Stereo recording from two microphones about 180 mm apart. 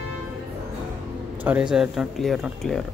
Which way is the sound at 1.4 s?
5° right (ahead or behind).